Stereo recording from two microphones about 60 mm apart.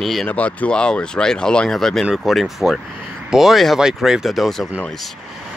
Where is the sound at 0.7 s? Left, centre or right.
Centre.